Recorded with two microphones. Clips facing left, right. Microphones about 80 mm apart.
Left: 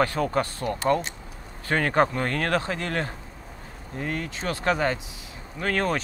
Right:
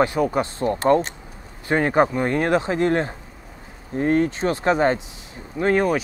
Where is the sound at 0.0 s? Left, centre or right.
Centre.